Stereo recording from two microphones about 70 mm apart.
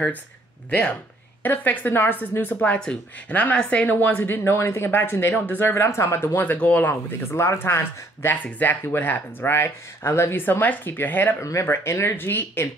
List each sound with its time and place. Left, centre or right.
0.7 s speech: centre
1.4 s a woman's voice: left